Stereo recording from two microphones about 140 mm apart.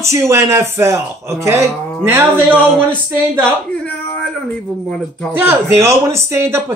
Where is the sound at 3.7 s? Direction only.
10° left (ahead or behind).